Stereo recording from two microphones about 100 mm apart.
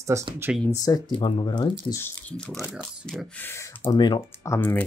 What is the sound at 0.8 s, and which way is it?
Speech, 40° left (ahead or behind).